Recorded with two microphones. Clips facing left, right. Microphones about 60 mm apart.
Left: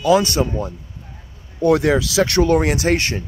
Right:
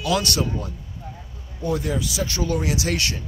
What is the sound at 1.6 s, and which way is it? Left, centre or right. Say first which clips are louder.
Speech: left 10 dB; left.